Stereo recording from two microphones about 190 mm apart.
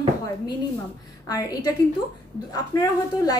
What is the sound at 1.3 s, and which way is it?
A woman's voice, 20° left (ahead or behind).